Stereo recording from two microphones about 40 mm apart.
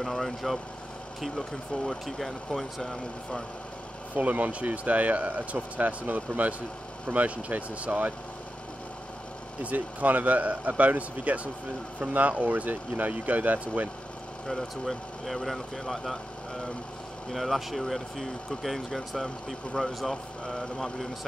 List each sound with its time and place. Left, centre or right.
0.0 s speech: centre
2.0 s speech: centre
4.1 s speech: right
9.6 s speech: right
14.5 s speech: centre
17.3 s speech: centre